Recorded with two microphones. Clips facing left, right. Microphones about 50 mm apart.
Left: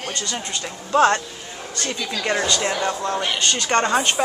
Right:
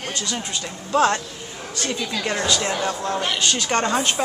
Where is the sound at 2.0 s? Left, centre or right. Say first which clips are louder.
Left 3 dB; centre.